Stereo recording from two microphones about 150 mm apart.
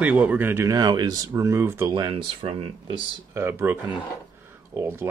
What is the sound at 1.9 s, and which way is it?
Speech, 30° right (ahead or behind).